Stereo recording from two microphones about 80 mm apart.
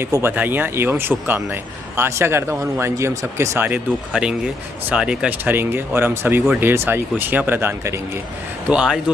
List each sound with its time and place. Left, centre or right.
0.0 s speech: right
3.6 s speech: centre
5.4 s speech: right
8.6 s speech: centre